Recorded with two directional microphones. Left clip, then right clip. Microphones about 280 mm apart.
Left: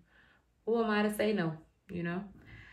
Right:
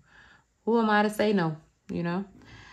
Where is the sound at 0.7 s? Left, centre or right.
Right.